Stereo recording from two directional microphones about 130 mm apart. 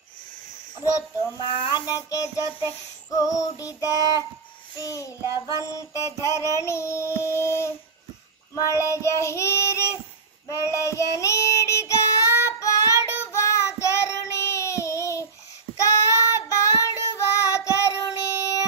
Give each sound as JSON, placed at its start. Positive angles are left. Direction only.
{"t": 1.4, "sound": "speech", "side_deg": 40}
{"t": 1.9, "sound": "child singing", "side_deg": 25}